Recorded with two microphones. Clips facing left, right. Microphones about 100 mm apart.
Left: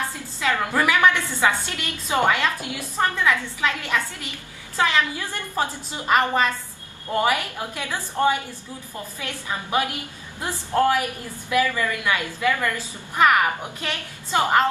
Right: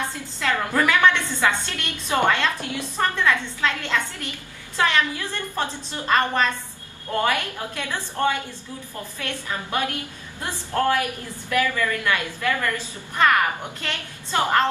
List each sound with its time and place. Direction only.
0.4 s a woman's voice: 15° left (ahead or behind)